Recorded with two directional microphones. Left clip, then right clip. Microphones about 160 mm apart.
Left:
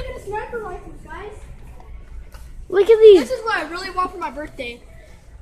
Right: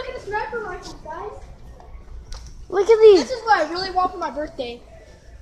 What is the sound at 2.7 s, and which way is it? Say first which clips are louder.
Speech: left 2 dB; 40° left (ahead or behind).